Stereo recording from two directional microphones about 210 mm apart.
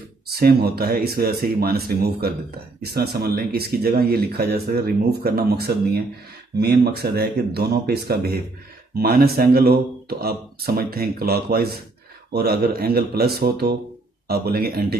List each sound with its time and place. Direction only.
0.3 s speech: 50° right (ahead or behind)